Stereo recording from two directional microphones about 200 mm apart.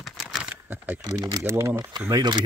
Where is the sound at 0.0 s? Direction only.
Centre (ahead or behind).